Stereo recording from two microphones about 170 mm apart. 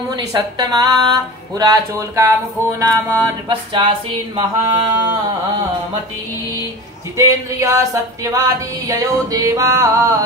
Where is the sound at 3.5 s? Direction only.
30° right (ahead or behind).